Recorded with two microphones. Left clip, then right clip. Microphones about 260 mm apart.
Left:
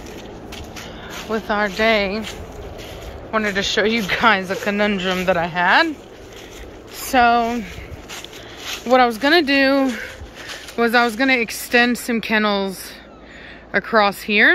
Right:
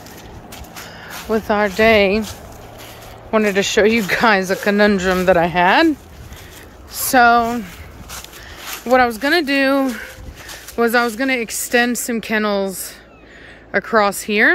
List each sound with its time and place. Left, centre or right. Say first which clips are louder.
1.3 s speech: right 4 dB; right
3.3 s speech: right 4 dB; right
7.1 s speech: right 3 dB; centre
8.7 s speech: right 1 dB; centre